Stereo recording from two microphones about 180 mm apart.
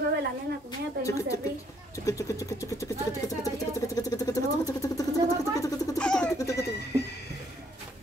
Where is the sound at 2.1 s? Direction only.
15° left (ahead or behind).